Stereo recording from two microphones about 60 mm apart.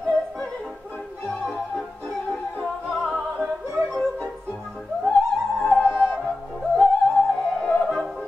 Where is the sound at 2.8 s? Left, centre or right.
Centre.